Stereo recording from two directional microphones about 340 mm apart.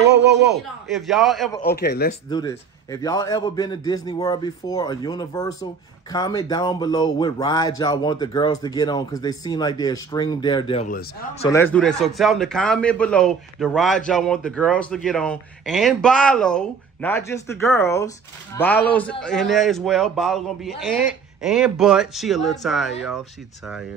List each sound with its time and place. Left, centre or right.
0.5 s a man's voice: centre
1.6 s speech: left
2.2 s speech: centre
11.5 s a man's voice: centre